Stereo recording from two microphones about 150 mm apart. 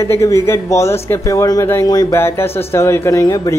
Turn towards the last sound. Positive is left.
turn(degrees=20)  # may be behind; listen again after turning